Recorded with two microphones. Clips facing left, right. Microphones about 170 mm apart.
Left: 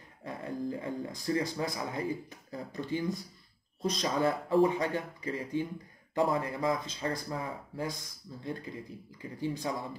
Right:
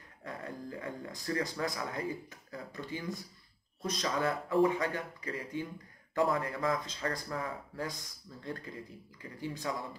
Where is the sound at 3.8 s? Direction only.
25° left (ahead or behind).